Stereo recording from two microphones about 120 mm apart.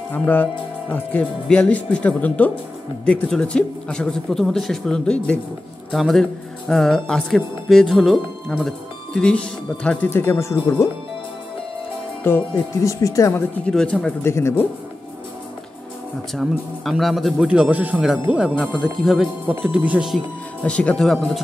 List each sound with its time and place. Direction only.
0.1 s speech: 15° left (ahead or behind)
10.0 s speech: 20° left (ahead or behind)
12.2 s speech: 20° left (ahead or behind)
13.7 s speech: 5° left (ahead or behind)
14.2 s speech: 20° left (ahead or behind)
16.3 s speech: centre (ahead or behind)
18.8 s speech: centre (ahead or behind)
20.6 s speech: 10° left (ahead or behind)